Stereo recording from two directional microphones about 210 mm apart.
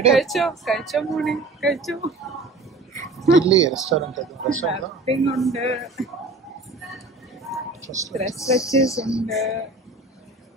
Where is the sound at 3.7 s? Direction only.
Centre (ahead or behind).